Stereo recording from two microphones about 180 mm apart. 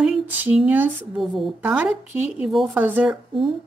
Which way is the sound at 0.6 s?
10° right (ahead or behind).